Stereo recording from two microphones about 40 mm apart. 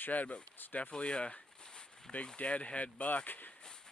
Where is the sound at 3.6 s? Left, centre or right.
Centre.